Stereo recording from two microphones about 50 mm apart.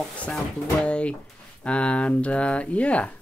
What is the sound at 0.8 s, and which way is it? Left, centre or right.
Speech, left.